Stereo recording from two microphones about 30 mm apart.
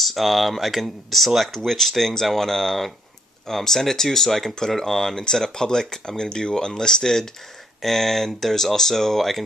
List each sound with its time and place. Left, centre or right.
0.0 s speech: centre
7.8 s speech: centre